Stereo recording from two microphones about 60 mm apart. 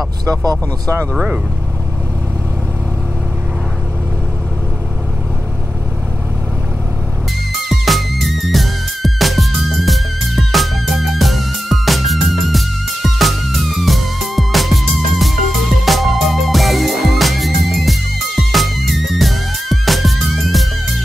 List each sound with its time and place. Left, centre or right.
0.2 s speech: right
7.7 s music: centre